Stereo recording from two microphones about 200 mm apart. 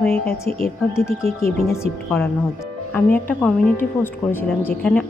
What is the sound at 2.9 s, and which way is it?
Speech, 10° left (ahead or behind).